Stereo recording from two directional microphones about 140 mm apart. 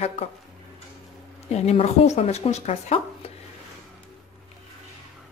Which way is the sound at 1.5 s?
50° left (ahead or behind).